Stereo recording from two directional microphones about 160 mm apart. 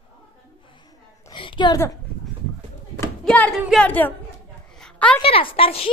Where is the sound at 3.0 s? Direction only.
10° left (ahead or behind).